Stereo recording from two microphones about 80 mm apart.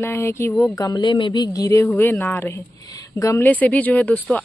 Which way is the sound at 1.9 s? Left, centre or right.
Left.